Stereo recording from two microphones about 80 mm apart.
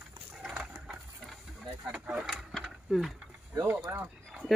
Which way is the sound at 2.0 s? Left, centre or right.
Centre.